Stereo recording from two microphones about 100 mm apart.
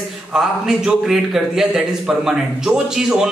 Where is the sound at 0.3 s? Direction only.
5° right (ahead or behind).